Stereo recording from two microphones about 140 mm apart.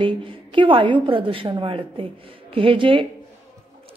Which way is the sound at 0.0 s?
35° right (ahead or behind).